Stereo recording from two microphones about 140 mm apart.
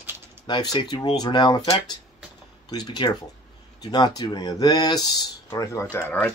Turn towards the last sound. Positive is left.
turn(degrees=15)  # may be behind; listen again after turning